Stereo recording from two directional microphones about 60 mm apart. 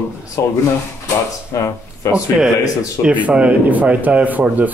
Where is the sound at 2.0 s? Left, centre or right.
Left.